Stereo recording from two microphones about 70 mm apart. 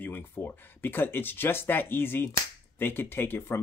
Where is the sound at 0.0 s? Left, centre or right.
Left.